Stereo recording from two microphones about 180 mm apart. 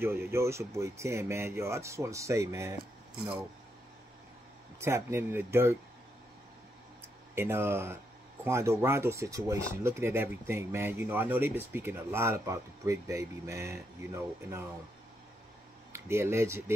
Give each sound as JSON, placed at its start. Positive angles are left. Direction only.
{"t": 0.0, "sound": "speech", "side_deg": -15}
{"t": 4.7, "sound": "speech", "side_deg": -15}
{"t": 7.3, "sound": "speech", "side_deg": -15}
{"t": 15.9, "sound": "speech", "side_deg": -15}